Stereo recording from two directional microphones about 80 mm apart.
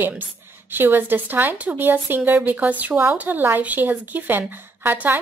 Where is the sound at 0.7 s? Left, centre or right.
Right.